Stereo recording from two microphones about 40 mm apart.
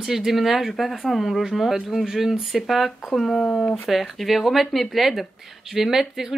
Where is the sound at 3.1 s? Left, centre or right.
Centre.